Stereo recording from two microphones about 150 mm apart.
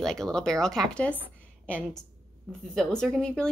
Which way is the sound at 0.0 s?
5° left (ahead or behind).